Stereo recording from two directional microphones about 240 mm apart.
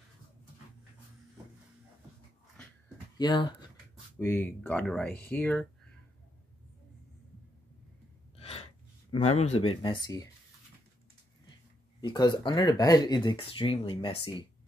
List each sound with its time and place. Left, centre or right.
3.2 s speech: centre
8.4 s gasp: left
9.1 s speech: left
12.0 s speech: centre